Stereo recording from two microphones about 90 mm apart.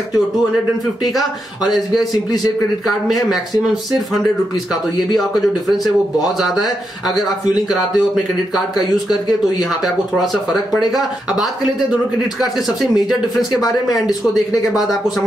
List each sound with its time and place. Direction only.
5.7 s speech: centre (ahead or behind)
10.2 s speech: centre (ahead or behind)
13.6 s speech: 45° left (ahead or behind)
14.6 s speech: centre (ahead or behind)